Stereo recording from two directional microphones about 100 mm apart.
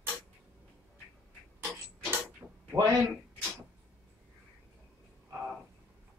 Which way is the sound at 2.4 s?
15° right (ahead or behind).